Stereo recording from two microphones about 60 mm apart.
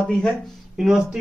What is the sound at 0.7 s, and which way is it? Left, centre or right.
Speech, centre.